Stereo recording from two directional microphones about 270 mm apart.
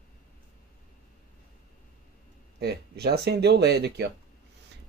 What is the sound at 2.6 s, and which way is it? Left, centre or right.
Speech, right.